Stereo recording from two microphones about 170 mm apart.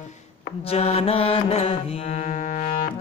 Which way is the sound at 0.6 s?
40° left (ahead or behind).